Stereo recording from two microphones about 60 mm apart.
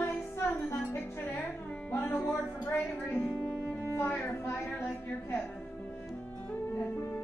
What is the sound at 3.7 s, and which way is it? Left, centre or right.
Music, left.